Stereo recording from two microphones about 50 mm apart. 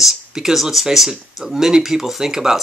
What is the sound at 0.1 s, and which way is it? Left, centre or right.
Speech, centre.